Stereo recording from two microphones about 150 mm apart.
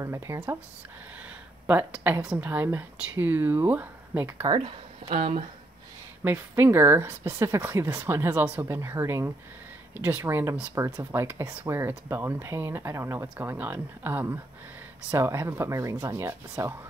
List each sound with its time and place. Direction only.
0.0 s speech: 20° right (ahead or behind)
1.7 s speech: 10° right (ahead or behind)
4.6 s speech: 40° right (ahead or behind)
6.2 s speech: 15° right (ahead or behind)